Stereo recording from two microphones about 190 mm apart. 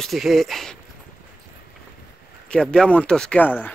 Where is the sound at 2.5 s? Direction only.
5° left (ahead or behind).